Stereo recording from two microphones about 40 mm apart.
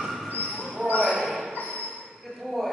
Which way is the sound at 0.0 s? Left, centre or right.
Centre.